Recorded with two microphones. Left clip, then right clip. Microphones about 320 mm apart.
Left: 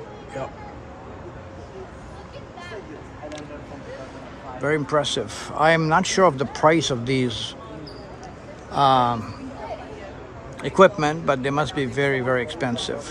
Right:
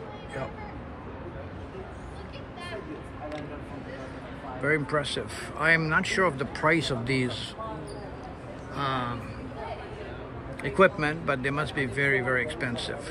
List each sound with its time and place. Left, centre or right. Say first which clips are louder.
4.6 s speech: left 5 dB; centre
8.7 s speech: left 13 dB; centre
10.6 s speech: left 6 dB; centre